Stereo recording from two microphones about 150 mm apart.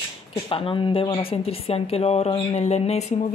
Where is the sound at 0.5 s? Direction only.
35° left (ahead or behind).